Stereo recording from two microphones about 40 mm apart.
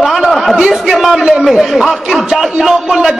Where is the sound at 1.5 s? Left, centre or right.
Centre.